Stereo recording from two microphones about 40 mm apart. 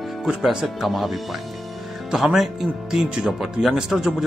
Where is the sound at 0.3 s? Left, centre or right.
Centre.